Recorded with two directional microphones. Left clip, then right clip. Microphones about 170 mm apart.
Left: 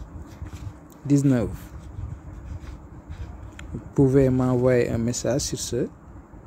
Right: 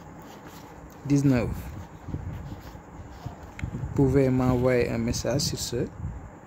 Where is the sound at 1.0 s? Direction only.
20° left (ahead or behind).